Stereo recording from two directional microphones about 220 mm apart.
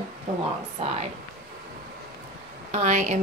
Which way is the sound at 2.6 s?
30° right (ahead or behind).